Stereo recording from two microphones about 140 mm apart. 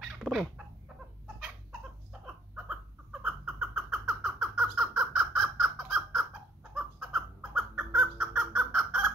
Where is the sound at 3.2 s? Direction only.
5° right (ahead or behind).